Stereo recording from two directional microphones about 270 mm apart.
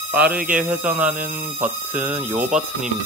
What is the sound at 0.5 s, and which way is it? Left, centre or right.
Speech, right.